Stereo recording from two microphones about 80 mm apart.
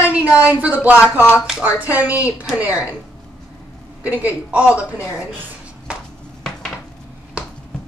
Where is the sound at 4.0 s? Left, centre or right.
Right.